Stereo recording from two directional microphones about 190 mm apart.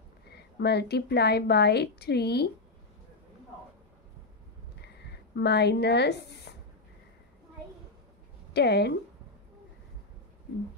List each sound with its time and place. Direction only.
0.6 s a woman's voice: 60° left (ahead or behind)
4.8 s a sound: 60° left (ahead or behind)
8.5 s a woman's voice: 60° left (ahead or behind)